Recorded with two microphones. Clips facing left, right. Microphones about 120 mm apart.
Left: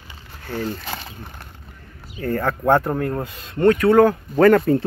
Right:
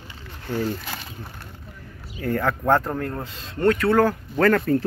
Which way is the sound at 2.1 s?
Centre (ahead or behind).